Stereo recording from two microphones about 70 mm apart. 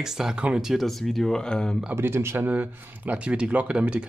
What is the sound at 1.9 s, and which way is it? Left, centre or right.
Speech, right.